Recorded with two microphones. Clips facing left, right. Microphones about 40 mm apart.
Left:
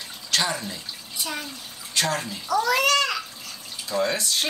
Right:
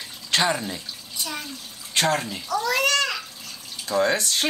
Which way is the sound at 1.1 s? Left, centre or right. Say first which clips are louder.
Left 1 dB; centre.